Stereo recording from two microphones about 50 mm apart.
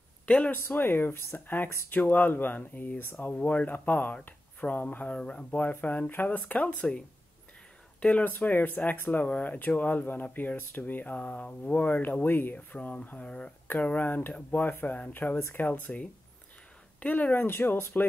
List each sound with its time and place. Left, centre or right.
0.5 s speech: left
3.3 s speech: left
3.6 s speech: left
6.8 s speech: centre
8.0 s speech: left
12.5 s speech: left
13.7 s speech: left
15.2 s speech: left